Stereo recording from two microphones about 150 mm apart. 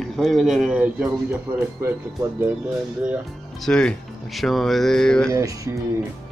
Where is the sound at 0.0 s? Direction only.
Centre (ahead or behind).